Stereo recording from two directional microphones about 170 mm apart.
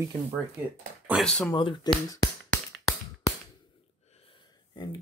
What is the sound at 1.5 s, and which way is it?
Speech, 30° left (ahead or behind).